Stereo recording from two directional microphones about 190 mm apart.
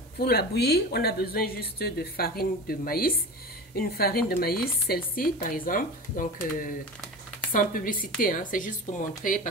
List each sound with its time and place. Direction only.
0.2 s a woman's voice: 55° left (ahead or behind)